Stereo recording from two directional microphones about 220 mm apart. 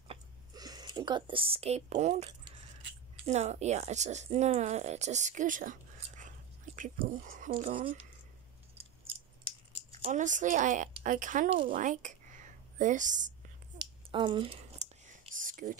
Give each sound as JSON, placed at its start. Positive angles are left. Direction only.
{"t": 0.1, "sound": "a sound", "side_deg": -20}
{"t": 3.3, "sound": "speech", "side_deg": -30}
{"t": 10.0, "sound": "speech", "side_deg": -35}
{"t": 13.7, "sound": "whispering", "side_deg": -20}